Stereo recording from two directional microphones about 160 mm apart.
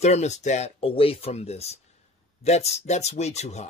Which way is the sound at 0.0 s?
45° left (ahead or behind).